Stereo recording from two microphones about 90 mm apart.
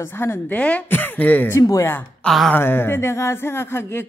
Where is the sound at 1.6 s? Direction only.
35° left (ahead or behind).